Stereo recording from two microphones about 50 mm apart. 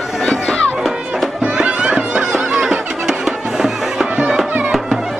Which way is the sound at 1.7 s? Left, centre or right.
Right.